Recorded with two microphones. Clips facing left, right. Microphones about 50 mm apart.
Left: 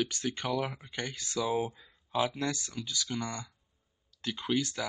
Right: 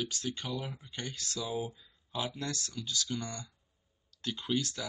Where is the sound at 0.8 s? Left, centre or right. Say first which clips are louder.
Left 4 dB; left.